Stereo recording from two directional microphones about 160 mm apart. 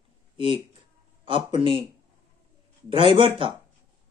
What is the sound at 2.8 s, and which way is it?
Speech, 35° right (ahead or behind).